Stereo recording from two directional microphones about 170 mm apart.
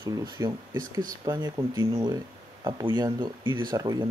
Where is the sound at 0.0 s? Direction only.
20° right (ahead or behind).